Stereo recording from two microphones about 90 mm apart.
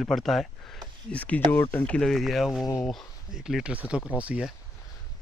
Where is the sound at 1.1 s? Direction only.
15° left (ahead or behind).